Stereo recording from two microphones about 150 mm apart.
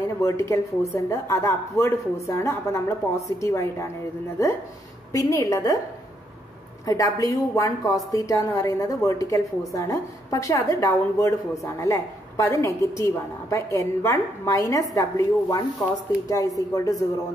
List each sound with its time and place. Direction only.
0.2 s a woman's voice: 20° left (ahead or behind)
5.1 s a woman's voice: 20° left (ahead or behind)
6.9 s a woman's voice: 20° left (ahead or behind)